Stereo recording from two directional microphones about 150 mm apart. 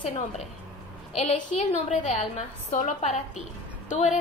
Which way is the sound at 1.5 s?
45° left (ahead or behind).